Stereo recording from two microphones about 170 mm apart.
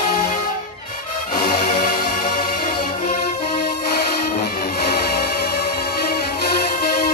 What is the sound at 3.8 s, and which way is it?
Music, 65° left (ahead or behind).